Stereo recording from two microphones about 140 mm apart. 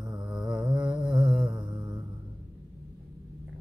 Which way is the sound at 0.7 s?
30° right (ahead or behind).